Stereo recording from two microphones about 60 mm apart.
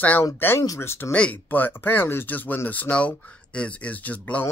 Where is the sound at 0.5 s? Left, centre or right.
Left.